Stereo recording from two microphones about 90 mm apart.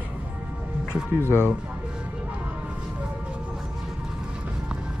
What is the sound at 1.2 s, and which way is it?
Speech, 25° left (ahead or behind).